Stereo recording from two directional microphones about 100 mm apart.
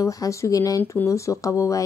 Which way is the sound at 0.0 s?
35° left (ahead or behind).